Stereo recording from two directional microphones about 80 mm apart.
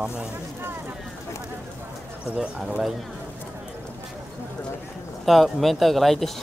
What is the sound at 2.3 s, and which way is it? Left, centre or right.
Speech, centre.